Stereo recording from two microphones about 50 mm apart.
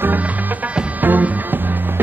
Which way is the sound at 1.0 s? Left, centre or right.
Right.